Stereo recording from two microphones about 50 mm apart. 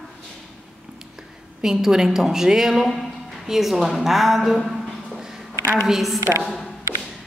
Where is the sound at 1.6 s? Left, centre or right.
Centre.